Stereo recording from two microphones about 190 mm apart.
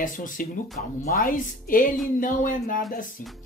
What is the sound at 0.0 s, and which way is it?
Speech, 45° left (ahead or behind).